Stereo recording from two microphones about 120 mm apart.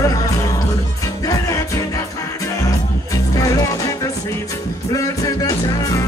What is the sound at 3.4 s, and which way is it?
Music, 25° left (ahead or behind).